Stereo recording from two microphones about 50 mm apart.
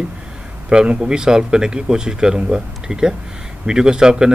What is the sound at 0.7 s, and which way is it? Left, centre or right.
Speech, centre.